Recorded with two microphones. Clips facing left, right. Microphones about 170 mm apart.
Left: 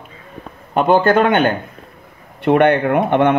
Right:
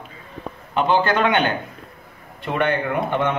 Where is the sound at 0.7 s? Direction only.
50° left (ahead or behind).